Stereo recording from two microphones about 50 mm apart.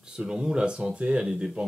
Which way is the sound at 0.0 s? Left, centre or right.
Centre.